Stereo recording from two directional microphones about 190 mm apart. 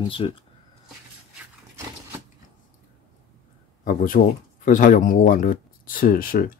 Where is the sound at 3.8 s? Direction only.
45° left (ahead or behind).